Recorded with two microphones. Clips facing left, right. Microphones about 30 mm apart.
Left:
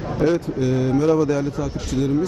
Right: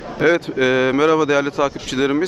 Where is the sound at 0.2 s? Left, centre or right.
Right.